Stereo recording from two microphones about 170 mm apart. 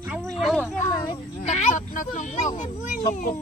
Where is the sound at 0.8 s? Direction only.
20° left (ahead or behind).